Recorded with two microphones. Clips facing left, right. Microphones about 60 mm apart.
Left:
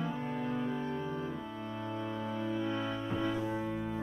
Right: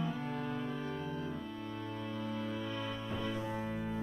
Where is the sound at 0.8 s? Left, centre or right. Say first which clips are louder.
Left 3 dB; left.